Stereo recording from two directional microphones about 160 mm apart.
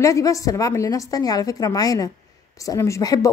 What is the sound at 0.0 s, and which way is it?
Speech, 20° left (ahead or behind).